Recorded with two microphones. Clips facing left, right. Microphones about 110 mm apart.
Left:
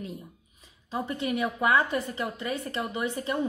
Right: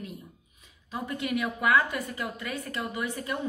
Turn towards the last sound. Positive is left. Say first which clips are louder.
# left 2 dB
turn(degrees=25)  # may be behind; listen again after turning